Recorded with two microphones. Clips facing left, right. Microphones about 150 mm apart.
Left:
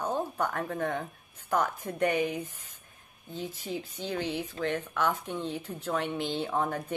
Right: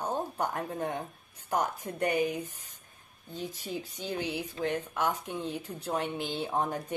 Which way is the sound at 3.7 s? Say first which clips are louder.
Left 2 dB; 10° right (ahead or behind).